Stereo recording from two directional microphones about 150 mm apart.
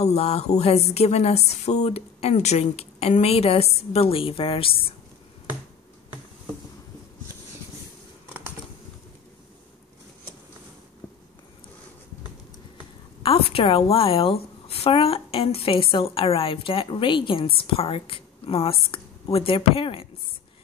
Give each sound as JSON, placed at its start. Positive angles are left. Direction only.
{"t": 0.0, "sound": "speech", "side_deg": 45}
{"t": 13.2, "sound": "a woman's voice", "side_deg": 40}